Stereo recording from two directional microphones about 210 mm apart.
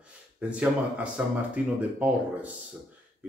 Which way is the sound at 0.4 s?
5° right (ahead or behind).